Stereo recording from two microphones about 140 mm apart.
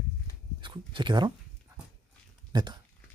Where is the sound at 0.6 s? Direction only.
35° right (ahead or behind).